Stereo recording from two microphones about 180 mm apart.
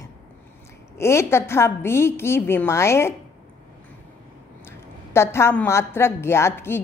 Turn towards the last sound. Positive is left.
turn(degrees=15)  # may be behind; listen again after turning